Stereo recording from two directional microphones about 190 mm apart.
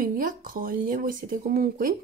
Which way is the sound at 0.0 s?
45° right (ahead or behind).